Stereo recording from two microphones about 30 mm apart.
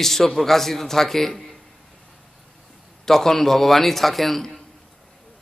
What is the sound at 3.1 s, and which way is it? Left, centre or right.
A man's voice, centre.